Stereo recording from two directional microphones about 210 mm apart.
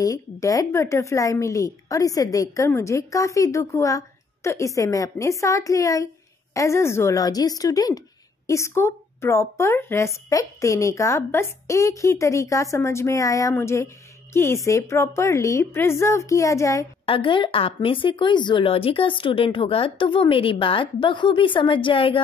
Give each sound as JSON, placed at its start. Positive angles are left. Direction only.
{"t": 0.0, "sound": "speech", "side_deg": 15}
{"t": 17.0, "sound": "speech", "side_deg": 25}